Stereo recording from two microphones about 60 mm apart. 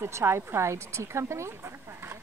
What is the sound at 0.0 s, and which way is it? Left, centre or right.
Speech, right.